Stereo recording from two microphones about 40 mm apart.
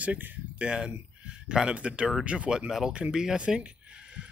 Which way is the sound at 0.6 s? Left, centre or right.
Right.